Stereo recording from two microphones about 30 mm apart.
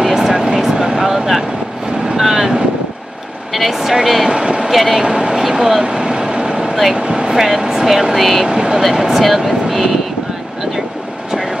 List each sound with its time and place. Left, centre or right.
0.0 s vehicle: centre
3.5 s speech: centre
4.3 s speech: right
4.6 s speech: centre
5.0 s speech: right
5.4 s vehicle: centre; by 6.7 s right
7.0 s speech: right; by 8.5 s centre
8.5 s speech: right; by 9.9 s centre